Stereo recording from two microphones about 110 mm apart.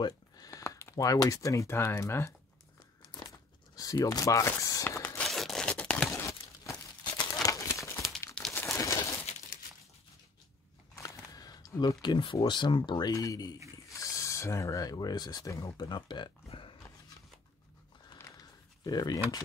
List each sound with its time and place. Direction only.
0.0 s speech: 30° left (ahead or behind)
3.1 s crumpling: 40° left (ahead or behind); by 5.2 s 20° left (ahead or behind)
5.2 s a sound: centre (ahead or behind)
6.1 s tearing: 25° left (ahead or behind)
7.4 s crumpling: 30° left (ahead or behind)
11.0 s a sound: 35° left (ahead or behind)
12.4 s speech: 45° left (ahead or behind); by 15.9 s 30° left (ahead or behind)
15.9 s speech: 45° left (ahead or behind)
16.4 s a sound: 50° left (ahead or behind)
18.9 s speech: 35° left (ahead or behind)